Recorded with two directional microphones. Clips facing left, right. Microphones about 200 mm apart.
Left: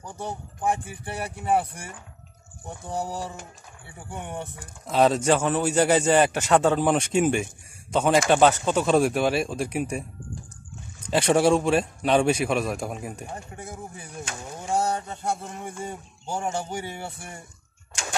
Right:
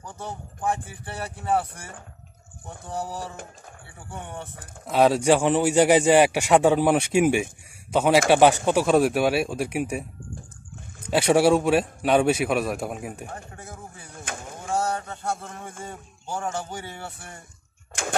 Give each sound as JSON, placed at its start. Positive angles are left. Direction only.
{"t": 0.0, "sound": "speech", "side_deg": 15}
{"t": 4.8, "sound": "a man's voice", "side_deg": -5}
{"t": 8.8, "sound": "a man's voice", "side_deg": -5}
{"t": 11.1, "sound": "a man's voice", "side_deg": -5}
{"t": 13.3, "sound": "speech", "side_deg": 15}
{"t": 14.7, "sound": "a sound", "side_deg": 15}
{"t": 15.8, "sound": "speech", "side_deg": 15}